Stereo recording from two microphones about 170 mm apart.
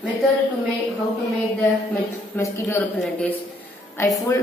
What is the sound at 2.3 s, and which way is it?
Speech, 10° left (ahead or behind).